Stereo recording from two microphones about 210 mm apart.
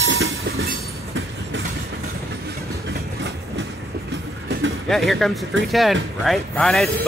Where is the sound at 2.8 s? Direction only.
55° right (ahead or behind).